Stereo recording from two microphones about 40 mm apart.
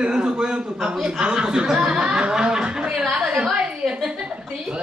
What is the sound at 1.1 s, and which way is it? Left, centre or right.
Chuckle, centre.